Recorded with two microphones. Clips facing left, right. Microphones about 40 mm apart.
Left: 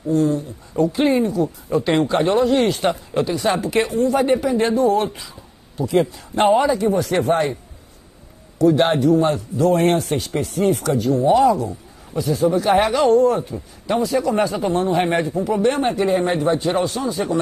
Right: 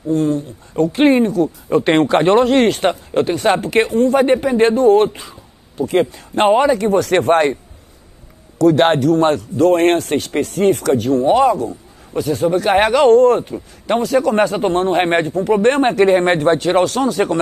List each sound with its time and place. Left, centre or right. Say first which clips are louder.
0.1 s speech: right 2 dB; right
6.8 s speech: right 4 dB; right
8.6 s speech: right 3 dB; right